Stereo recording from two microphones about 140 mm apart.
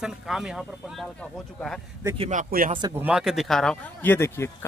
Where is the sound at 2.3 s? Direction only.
75° right (ahead or behind).